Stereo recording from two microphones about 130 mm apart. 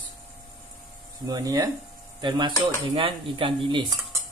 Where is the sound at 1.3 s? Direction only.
30° right (ahead or behind).